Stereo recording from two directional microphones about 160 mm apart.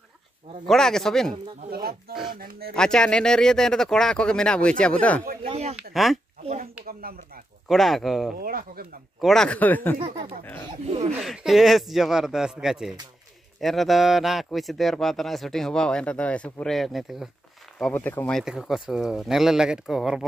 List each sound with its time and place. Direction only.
0.7 s speech: 5° left (ahead or behind)
1.7 s speech: 70° right (ahead or behind)
2.7 s speech: 5° left (ahead or behind)
5.4 s speech: 40° right (ahead or behind)
6.9 s speech: 70° right (ahead or behind)
7.6 s speech: centre (ahead or behind)
8.4 s speech: 65° right (ahead or behind)
9.2 s speech: 5° left (ahead or behind)
9.9 s speech: 30° right (ahead or behind)
11.1 s speech: 5° right (ahead or behind)
18.4 s speech: 5° right (ahead or behind)